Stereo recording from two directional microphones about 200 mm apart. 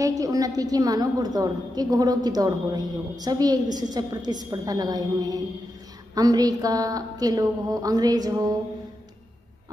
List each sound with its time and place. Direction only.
0.0 s a woman's voice: 15° right (ahead or behind)